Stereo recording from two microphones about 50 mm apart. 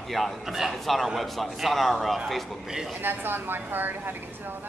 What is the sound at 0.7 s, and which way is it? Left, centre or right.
Speech, centre.